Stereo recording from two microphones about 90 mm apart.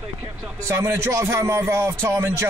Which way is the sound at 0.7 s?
30° right (ahead or behind).